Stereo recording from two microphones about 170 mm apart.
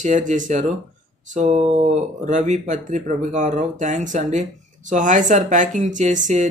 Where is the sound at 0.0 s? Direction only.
50° right (ahead or behind).